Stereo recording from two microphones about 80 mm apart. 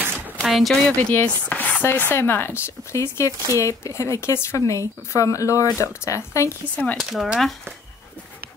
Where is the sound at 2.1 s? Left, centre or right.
Left.